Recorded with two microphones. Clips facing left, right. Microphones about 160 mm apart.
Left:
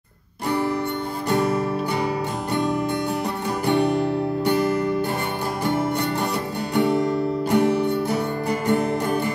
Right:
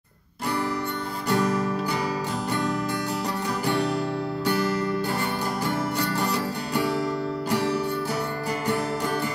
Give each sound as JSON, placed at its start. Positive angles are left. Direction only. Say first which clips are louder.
{"t": 7.5, "sound": "music", "louder": "left 6 dB", "side_deg": 55}